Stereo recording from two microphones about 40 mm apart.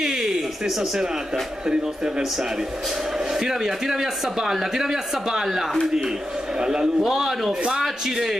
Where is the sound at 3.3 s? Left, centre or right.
Centre.